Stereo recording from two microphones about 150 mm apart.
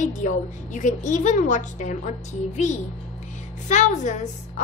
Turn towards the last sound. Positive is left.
turn(degrees=55)  # may be behind; listen again after turning